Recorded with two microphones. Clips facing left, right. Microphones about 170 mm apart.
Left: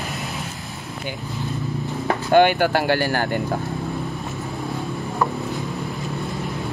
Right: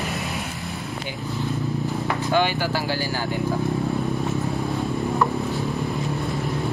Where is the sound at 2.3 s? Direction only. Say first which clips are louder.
Left 7 dB; 60° left (ahead or behind).